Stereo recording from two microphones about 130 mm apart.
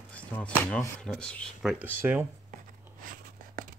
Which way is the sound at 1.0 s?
5° left (ahead or behind).